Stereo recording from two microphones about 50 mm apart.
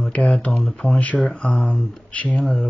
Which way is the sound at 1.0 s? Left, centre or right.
Left.